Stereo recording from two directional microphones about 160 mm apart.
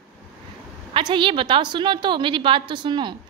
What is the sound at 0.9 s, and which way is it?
A woman's voice, 30° right (ahead or behind).